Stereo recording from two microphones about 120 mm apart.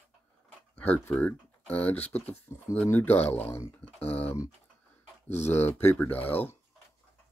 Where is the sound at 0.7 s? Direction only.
15° left (ahead or behind).